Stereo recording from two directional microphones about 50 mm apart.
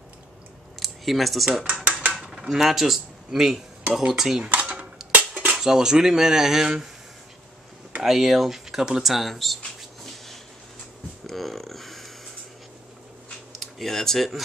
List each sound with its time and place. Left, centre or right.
0.7 s speech: centre
1.9 s mechanisms: right
2.2 s speech: centre
4.5 s a sound: right
5.1 s cutlery: right
5.6 s speech: centre
8.0 s speech: centre
9.1 s speech: centre
11.2 s a sound: centre
13.6 s speech: centre